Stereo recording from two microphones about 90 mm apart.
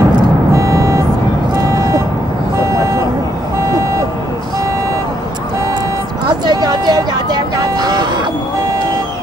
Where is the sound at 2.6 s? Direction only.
35° right (ahead or behind).